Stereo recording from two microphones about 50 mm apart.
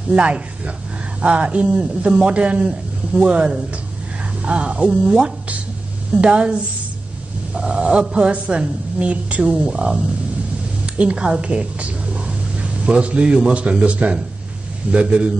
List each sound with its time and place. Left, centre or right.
0.1 s a woman's voice: right
11.0 s a woman's voice: right